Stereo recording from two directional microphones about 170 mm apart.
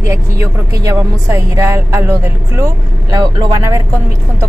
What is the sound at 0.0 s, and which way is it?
Speech, 15° right (ahead or behind).